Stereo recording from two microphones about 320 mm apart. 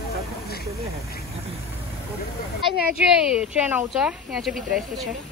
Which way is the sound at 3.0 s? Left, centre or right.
Centre.